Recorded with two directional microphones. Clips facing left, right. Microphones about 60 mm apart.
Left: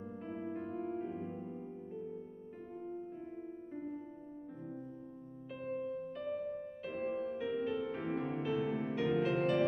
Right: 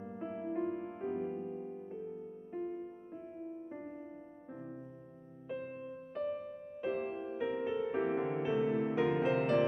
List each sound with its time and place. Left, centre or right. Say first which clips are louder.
0.2 s music: right 6 dB; centre
6.8 s music: right 3 dB; centre